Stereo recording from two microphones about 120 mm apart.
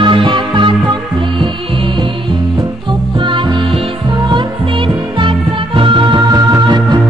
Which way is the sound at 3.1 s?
45° right (ahead or behind).